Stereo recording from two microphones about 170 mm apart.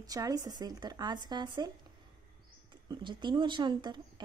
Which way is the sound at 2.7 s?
30° right (ahead or behind).